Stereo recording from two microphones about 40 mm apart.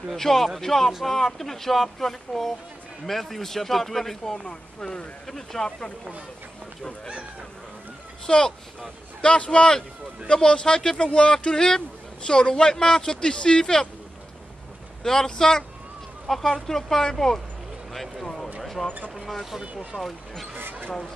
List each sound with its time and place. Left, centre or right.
0.1 s speech: centre
4.5 s speech: left
8.3 s speech: centre
15.0 s speech: centre
17.9 s speech: centre
18.2 s speech: centre
18.6 s a sound: centre
19.6 s speech: right
20.0 s speech: centre